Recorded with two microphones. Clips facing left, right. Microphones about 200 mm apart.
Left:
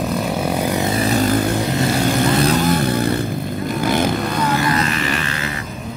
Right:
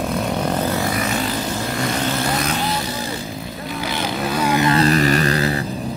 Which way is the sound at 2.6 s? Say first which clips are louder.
Left 7 dB; 50° left (ahead or behind).